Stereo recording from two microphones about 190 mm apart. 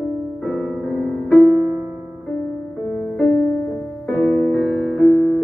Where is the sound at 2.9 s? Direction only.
5° left (ahead or behind).